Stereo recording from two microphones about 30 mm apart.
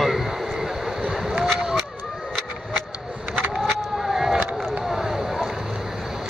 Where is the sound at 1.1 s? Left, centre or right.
Centre.